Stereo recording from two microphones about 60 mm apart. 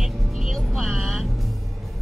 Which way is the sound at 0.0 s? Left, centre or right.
Centre.